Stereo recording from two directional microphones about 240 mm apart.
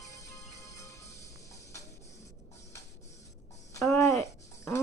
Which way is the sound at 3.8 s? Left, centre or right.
Centre.